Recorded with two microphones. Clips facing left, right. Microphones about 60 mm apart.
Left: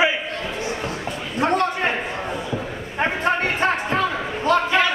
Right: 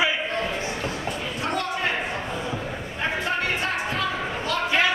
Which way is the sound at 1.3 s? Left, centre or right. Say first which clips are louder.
Left 9 dB; left.